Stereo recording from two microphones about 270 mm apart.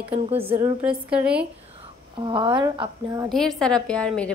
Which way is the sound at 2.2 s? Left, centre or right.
Centre.